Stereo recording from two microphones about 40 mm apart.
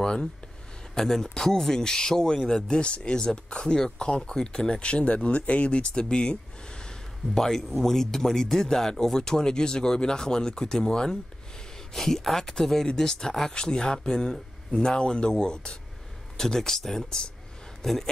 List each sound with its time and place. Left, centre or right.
0.0 s speech: centre
7.3 s speech: centre
16.3 s speech: centre